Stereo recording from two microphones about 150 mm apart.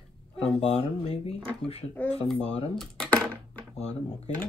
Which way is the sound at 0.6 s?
45° left (ahead or behind).